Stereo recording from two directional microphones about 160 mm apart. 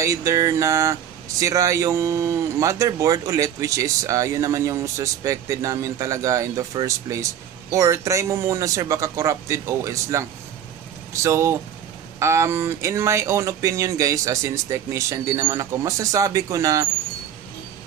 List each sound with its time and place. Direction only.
0.0 s speech: 20° right (ahead or behind)
11.2 s speech: 15° right (ahead or behind)